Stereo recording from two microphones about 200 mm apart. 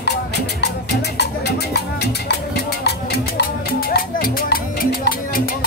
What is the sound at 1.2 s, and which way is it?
Music, 55° left (ahead or behind).